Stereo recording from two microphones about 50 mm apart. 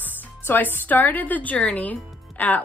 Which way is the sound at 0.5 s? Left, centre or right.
Left.